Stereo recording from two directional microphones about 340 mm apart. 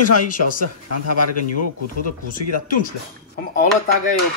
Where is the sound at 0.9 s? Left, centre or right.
Left.